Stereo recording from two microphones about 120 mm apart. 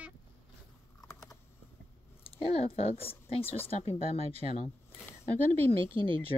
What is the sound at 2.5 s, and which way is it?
Speech, 60° left (ahead or behind).